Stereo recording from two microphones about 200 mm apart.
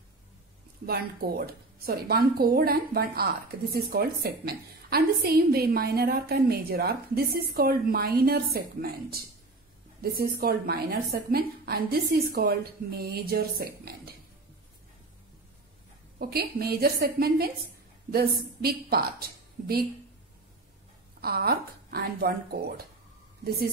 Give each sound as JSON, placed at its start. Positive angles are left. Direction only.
{"t": 0.8, "sound": "speech", "side_deg": -50}
{"t": 16.2, "sound": "speech", "side_deg": -50}
{"t": 21.2, "sound": "speech", "side_deg": -50}